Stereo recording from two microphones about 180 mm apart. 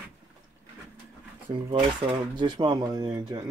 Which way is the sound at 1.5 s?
30° right (ahead or behind).